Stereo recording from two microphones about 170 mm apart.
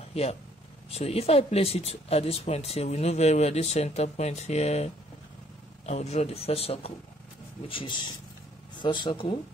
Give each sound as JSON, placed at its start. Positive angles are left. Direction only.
{"t": 0.1, "sound": "speech", "side_deg": 35}
{"t": 5.9, "sound": "speech", "side_deg": 40}